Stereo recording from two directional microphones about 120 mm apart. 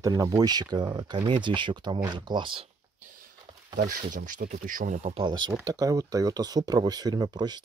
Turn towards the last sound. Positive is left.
turn(degrees=-35)  # may be behind; listen again after turning